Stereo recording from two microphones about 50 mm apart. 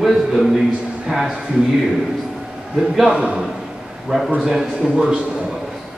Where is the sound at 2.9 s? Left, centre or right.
Centre.